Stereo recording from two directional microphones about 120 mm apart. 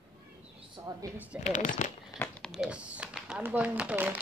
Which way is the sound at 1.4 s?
85° left.